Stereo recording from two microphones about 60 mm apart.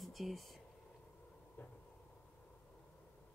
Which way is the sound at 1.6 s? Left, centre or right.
Left.